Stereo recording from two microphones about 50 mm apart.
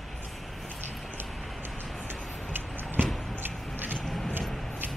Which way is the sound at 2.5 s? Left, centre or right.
Right.